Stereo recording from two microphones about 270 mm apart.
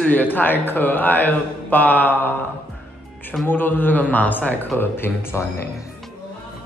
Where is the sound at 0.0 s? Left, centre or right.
Centre.